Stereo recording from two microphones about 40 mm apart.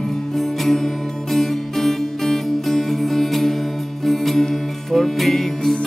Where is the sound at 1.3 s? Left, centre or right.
Centre.